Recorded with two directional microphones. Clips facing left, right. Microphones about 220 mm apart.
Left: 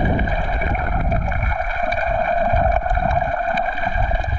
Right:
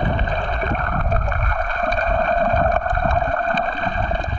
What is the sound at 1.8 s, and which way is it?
Boat, 10° left (ahead or behind).